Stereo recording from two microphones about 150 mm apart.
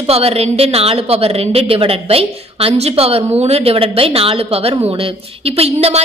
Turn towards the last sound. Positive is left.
turn(degrees=-40)  # may be behind; listen again after turning